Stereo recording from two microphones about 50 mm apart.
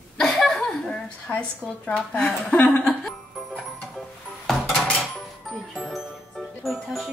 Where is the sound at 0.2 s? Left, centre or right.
Centre.